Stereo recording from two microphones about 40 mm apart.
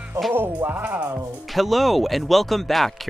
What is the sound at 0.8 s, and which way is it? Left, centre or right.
Speech, right.